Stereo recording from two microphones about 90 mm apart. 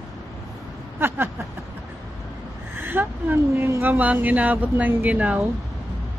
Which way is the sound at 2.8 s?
20° right (ahead or behind).